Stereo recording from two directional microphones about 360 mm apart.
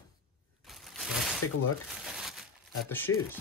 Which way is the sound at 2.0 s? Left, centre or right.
Centre.